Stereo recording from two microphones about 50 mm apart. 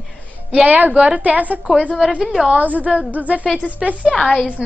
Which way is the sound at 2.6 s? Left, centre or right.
Right.